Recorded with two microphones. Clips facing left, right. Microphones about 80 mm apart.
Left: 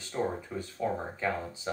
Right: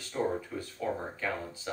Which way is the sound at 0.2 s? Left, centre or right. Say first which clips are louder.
Even; centre.